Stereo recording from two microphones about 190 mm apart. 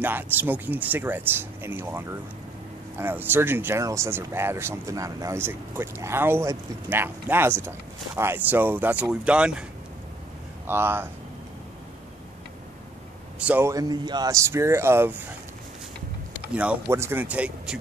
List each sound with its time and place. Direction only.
0.0 s speech: 10° right (ahead or behind)
10.7 s speech: 10° right (ahead or behind)
13.4 s speech: 10° right (ahead or behind)
16.5 s speech: 10° right (ahead or behind)